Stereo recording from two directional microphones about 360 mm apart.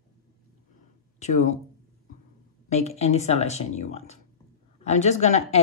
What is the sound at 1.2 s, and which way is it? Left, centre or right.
Speech, centre.